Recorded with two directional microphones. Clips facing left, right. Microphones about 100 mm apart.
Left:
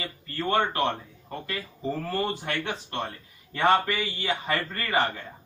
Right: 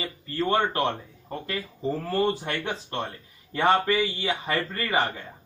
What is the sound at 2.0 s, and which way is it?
Speech, 25° right (ahead or behind).